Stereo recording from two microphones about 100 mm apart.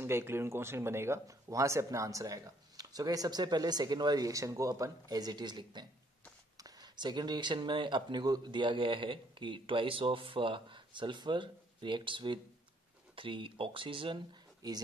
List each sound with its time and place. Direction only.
0.0 s speech: 25° right (ahead or behind); by 14.8 s 45° right (ahead or behind)